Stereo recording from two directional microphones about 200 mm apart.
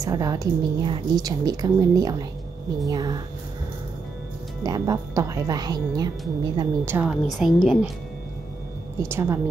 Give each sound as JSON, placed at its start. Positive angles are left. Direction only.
{"t": 0.0, "sound": "a woman's voice", "side_deg": -15}
{"t": 4.6, "sound": "a woman's voice", "side_deg": -20}
{"t": 6.9, "sound": "a woman's voice", "side_deg": -5}
{"t": 9.0, "sound": "a woman's voice", "side_deg": -10}